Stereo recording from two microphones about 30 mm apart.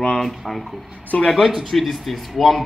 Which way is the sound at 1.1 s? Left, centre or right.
Centre.